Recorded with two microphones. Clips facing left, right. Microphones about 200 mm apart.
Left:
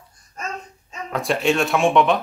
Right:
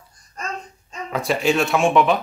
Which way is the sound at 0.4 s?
Centre (ahead or behind).